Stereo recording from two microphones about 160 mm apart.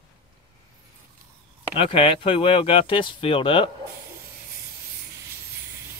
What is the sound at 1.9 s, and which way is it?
Speech, 35° left (ahead or behind).